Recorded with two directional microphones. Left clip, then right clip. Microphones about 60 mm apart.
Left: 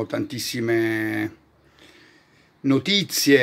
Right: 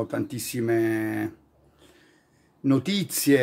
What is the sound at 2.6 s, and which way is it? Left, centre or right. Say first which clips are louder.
Speech: left 4 dB; centre.